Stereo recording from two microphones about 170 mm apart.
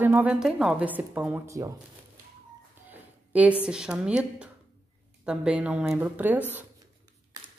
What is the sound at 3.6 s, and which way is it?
A woman's voice, 5° right (ahead or behind).